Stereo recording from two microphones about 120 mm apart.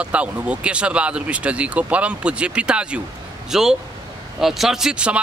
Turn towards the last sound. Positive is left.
turn(degrees=-5)  # may be behind; listen again after turning